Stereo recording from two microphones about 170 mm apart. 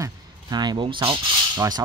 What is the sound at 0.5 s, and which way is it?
Speech, 25° right (ahead or behind).